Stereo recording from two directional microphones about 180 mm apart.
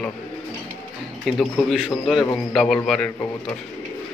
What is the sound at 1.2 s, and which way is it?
A man's voice, centre (ahead or behind).